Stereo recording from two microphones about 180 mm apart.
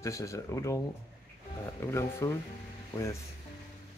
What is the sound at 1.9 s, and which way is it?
Speech, 15° left (ahead or behind).